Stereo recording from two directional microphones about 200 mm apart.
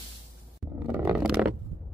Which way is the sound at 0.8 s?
10° right (ahead or behind).